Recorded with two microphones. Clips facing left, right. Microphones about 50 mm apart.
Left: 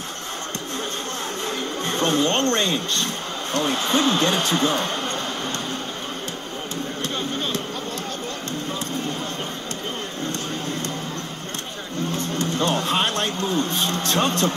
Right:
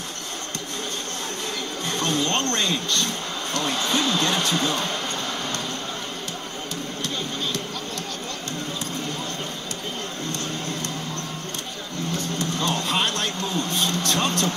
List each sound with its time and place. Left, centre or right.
1.9 s speech: left
12.4 s music: left
12.8 s a sound: left